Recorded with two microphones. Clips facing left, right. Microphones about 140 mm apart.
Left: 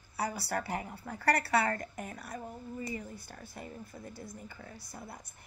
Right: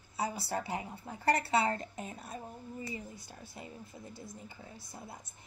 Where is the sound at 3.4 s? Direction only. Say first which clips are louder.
Left 1 dB; 55° left (ahead or behind).